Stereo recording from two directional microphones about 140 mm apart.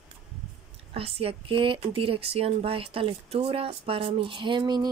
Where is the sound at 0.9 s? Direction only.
45° right (ahead or behind).